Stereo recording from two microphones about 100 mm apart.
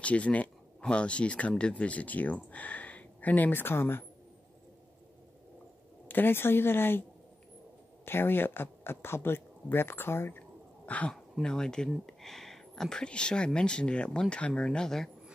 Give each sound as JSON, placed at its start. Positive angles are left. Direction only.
{"t": 0.0, "sound": "speech", "side_deg": 15}
{"t": 6.0, "sound": "speech", "side_deg": 20}
{"t": 10.9, "sound": "speech", "side_deg": 15}